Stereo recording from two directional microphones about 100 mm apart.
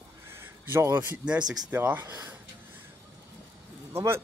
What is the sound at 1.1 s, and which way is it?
Speech, 10° right (ahead or behind).